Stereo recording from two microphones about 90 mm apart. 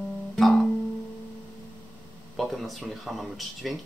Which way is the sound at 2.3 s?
Centre (ahead or behind).